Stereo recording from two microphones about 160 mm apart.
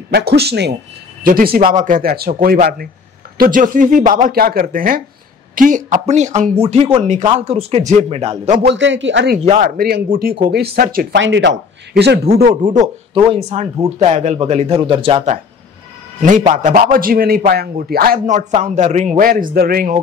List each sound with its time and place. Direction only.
0.1 s a man's voice: 85° right
1.2 s a man's voice: 65° right (ahead or behind); by 8.5 s 40° right (ahead or behind)
8.6 s a man's voice: 90° right
9.4 s a man's voice: 45° right (ahead or behind)
9.7 s speech: 75° right (ahead or behind); by 12.2 s 90° right
13.1 s speech: 40° right (ahead or behind)
16.2 s speech: 55° right (ahead or behind); by 18.2 s 70° right (ahead or behind)
18.2 s a man's voice: 50° right (ahead or behind); by 20.0 s 65° right (ahead or behind)